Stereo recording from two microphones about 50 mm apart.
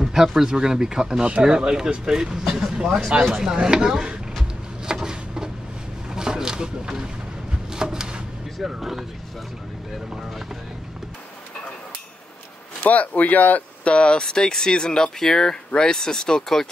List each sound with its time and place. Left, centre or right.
0.0 s speech: centre
4.8 s a sound: centre
8.5 s speech: centre
12.9 s speech: left
13.9 s speech: centre